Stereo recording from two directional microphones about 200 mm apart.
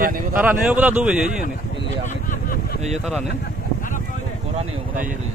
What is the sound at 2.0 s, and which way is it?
Vehicle, 40° left (ahead or behind).